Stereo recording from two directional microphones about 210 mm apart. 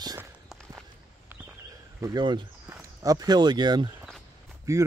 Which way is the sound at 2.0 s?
20° right (ahead or behind).